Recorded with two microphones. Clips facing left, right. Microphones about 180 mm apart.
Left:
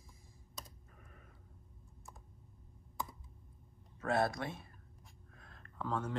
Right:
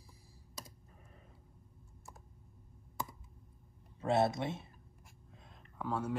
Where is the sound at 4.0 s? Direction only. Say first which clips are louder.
Right 3 dB; 25° right (ahead or behind).